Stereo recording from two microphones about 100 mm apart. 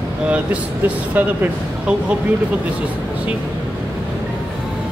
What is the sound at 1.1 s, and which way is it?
Speech, 15° right (ahead or behind).